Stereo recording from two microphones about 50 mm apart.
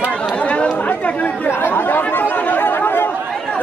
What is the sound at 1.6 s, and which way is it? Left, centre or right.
Chatter, left.